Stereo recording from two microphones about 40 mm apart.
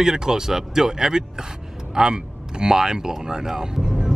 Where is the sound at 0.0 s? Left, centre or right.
Centre.